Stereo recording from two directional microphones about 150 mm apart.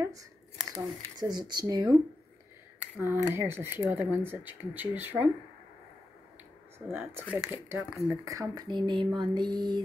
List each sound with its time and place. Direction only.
0.7 s speech: 25° right (ahead or behind)
3.0 s speech: 15° right (ahead or behind)
6.9 s speech: 15° right (ahead or behind); by 9.8 s 30° right (ahead or behind)